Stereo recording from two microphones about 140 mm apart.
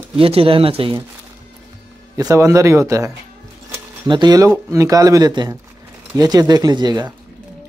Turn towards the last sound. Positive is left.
turn(degrees=-30)  # may be behind; listen again after turning